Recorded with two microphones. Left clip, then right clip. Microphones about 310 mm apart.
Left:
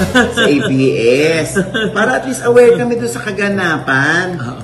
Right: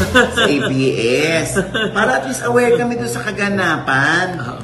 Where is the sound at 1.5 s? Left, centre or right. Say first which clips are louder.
Left 2 dB; centre.